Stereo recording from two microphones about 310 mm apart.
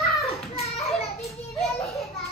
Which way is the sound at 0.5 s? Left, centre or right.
Centre.